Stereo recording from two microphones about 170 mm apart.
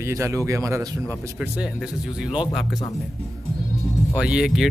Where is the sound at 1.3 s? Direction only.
5° right (ahead or behind).